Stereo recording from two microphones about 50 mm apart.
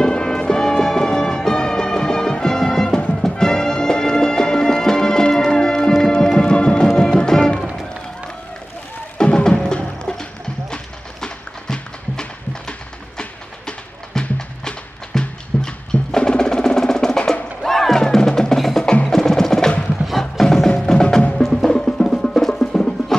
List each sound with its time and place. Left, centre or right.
0.0 s music: centre
9.2 s music: centre
10.7 s run: centre
13.2 s train: centre
14.6 s music: centre
19.0 s wood block: centre
20.1 s music: centre